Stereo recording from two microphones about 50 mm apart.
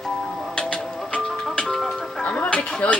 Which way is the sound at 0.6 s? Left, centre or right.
Left.